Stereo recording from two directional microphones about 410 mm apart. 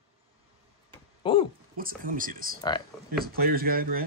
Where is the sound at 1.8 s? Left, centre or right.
Centre.